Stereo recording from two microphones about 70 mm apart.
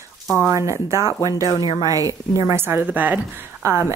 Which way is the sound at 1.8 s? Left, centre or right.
Right.